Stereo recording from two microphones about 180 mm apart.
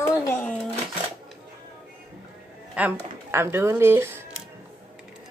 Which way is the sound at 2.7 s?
10° right (ahead or behind).